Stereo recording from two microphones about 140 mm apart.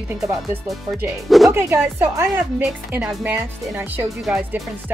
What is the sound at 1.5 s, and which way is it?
Speech, 20° right (ahead or behind).